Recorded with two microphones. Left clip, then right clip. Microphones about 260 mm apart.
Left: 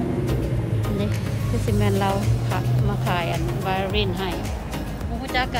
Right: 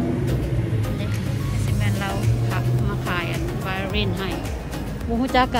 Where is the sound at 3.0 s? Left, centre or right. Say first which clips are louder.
Left 2 dB; centre.